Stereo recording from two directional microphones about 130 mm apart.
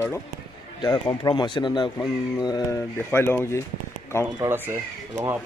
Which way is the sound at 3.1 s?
20° left (ahead or behind).